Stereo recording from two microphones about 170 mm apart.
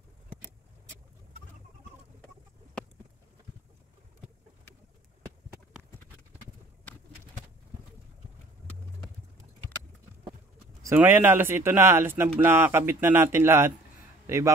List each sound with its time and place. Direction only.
10.8 s a man's voice: 15° right (ahead or behind)